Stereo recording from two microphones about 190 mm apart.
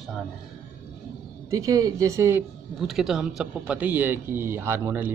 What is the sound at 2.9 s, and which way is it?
Speech, centre (ahead or behind).